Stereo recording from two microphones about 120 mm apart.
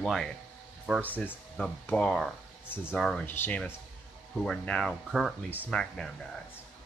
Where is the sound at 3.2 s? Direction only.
15° left (ahead or behind).